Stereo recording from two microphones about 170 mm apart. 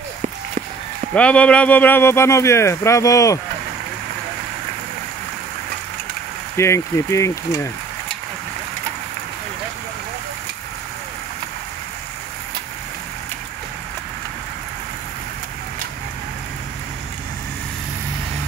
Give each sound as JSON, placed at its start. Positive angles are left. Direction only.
{"t": 1.1, "sound": "speech", "side_deg": 5}
{"t": 6.5, "sound": "speech", "side_deg": 15}